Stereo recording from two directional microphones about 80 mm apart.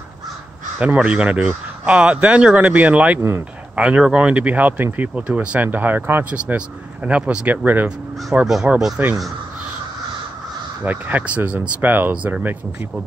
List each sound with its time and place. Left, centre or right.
0.7 s speech: centre
3.2 s speech: right
3.7 s speech: centre
6.3 s speech: centre
8.6 s speech: centre
10.8 s speech: right